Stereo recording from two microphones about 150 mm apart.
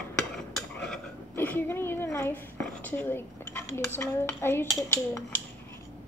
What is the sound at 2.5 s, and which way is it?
Dishes, 15° left (ahead or behind).